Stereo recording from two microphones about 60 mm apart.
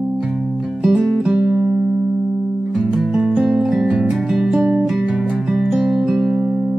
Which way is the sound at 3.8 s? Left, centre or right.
Centre.